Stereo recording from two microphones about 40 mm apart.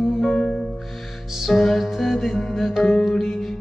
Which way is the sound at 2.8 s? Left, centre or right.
Centre.